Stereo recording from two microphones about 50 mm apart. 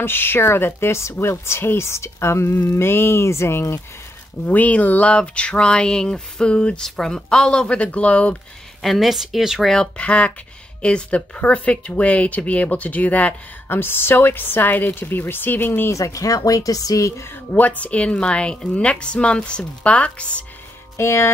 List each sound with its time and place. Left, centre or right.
0.0 s speech: left
4.5 s speech: left
8.8 s speech: centre
9.9 s speech: left
13.7 s a woman's voice: left
15.9 s speech: left
17.5 s speech: left
21.0 s speech: left